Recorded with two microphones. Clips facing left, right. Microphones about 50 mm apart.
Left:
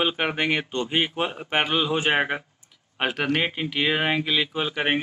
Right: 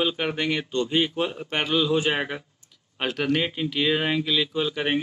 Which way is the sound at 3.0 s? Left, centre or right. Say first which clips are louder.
Left 1 dB; centre.